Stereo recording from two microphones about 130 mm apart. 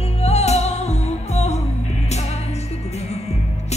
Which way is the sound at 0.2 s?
55° left (ahead or behind).